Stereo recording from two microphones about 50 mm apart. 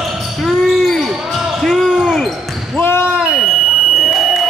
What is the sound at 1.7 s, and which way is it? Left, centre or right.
Basketball bounce, centre.